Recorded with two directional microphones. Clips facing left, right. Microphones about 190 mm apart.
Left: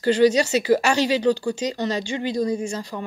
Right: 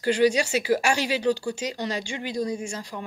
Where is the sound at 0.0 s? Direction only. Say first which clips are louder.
Left 4 dB; 10° right (ahead or behind).